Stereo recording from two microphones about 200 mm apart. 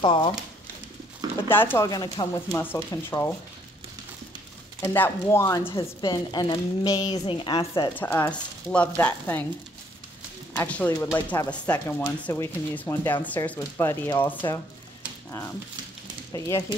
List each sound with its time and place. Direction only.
0.0 s a woman's voice: 25° left (ahead or behind)
1.5 s speech: 10° left (ahead or behind)
4.8 s a woman's voice: 10° left (ahead or behind)
8.0 s speech: 10° left (ahead or behind)
10.5 s speech: 10° left (ahead or behind)
16.3 s speech: 15° left (ahead or behind)